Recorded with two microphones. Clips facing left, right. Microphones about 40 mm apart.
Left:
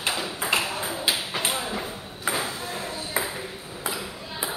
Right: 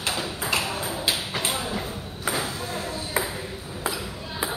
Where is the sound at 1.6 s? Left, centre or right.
Centre.